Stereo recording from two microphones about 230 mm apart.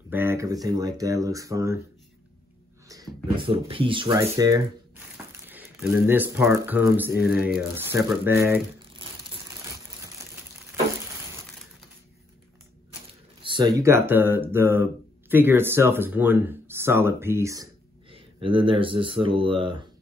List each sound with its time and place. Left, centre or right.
0.1 s speech: centre
2.9 s a sound: centre
3.4 s speech: right; by 8.6 s centre
13.4 s speech: right